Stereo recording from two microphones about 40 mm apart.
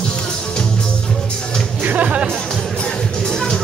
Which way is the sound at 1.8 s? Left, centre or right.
Right.